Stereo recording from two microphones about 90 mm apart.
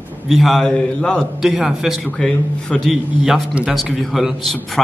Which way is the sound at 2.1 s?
10° left (ahead or behind).